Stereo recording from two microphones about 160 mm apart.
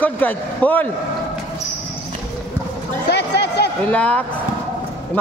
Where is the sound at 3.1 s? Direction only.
90° left.